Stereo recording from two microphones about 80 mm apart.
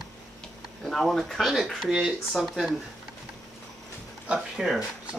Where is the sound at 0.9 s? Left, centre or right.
Centre.